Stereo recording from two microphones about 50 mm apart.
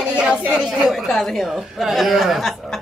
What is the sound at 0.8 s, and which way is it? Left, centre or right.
Speech, centre.